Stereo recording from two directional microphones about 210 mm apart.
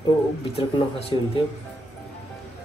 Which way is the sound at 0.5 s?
25° left (ahead or behind).